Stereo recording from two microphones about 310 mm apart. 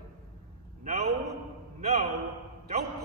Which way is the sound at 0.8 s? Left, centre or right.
Right.